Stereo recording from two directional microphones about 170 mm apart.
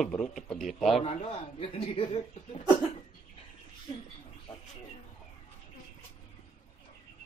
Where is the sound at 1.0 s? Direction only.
40° left (ahead or behind).